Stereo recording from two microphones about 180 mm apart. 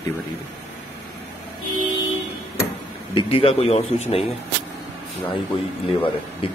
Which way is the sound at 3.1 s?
30° left (ahead or behind).